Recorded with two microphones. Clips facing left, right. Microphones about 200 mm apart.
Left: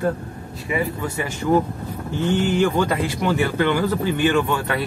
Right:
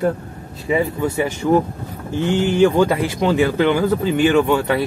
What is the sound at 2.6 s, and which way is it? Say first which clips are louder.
Speech: right 5 dB; 15° right (ahead or behind).